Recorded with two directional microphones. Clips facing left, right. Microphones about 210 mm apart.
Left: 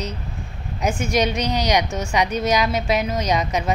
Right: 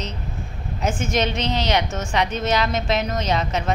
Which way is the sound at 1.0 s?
15° left (ahead or behind).